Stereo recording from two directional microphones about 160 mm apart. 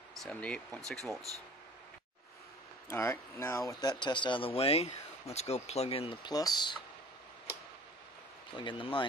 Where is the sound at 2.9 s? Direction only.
15° left (ahead or behind).